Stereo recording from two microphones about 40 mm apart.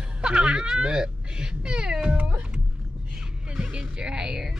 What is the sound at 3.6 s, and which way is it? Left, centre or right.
Speech, right.